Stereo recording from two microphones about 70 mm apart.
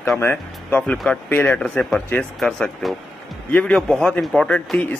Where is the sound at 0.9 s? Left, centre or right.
Centre.